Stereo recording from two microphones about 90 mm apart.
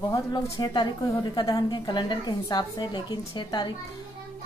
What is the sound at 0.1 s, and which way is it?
A woman's voice, 50° left (ahead or behind).